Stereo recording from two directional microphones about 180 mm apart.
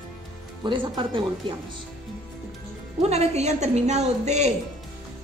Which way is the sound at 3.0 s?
35° right (ahead or behind).